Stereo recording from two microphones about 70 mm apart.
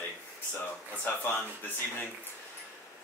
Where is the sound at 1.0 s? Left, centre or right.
Left.